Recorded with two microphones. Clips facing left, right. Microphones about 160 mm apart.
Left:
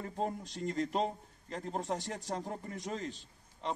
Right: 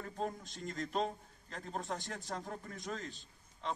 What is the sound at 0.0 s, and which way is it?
A man's voice, 25° left (ahead or behind).